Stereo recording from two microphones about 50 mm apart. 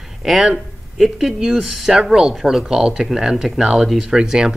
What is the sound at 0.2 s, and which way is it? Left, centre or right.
Speech, centre.